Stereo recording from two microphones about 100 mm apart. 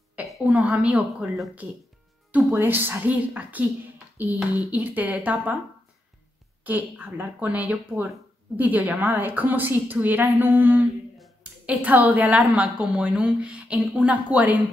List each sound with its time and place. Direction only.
0.5 s a woman's voice: 15° right (ahead or behind)
2.6 s a woman's voice: 20° right (ahead or behind)
6.6 s a woman's voice: 15° right (ahead or behind)